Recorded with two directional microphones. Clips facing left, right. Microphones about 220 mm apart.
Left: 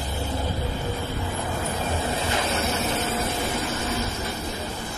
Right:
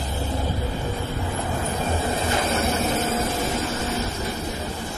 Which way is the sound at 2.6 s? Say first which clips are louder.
Right 3 dB; 50° right (ahead or behind).